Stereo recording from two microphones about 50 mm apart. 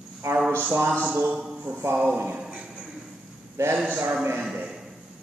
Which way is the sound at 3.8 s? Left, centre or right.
Right.